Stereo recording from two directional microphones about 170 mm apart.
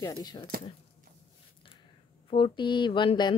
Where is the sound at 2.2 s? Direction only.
30° left (ahead or behind).